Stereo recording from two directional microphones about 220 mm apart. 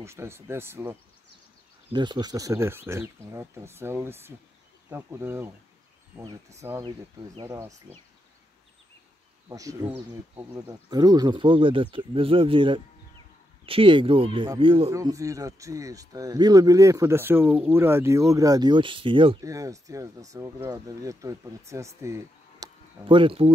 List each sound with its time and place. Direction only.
0.0 s speech: 10° right (ahead or behind)
9.5 s speech: 15° right (ahead or behind)